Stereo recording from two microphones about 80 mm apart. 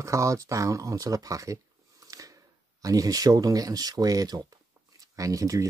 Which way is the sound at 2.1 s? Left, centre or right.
Right.